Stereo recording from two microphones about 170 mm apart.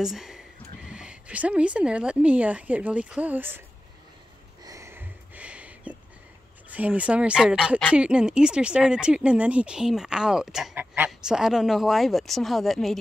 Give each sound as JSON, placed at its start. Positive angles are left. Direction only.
{"t": 0.0, "sound": "a woman's voice", "side_deg": 0}
{"t": 4.6, "sound": "a sound", "side_deg": -15}
{"t": 6.7, "sound": "a woman's voice", "side_deg": -10}